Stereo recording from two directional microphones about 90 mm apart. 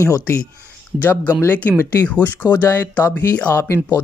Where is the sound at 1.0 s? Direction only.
20° left (ahead or behind).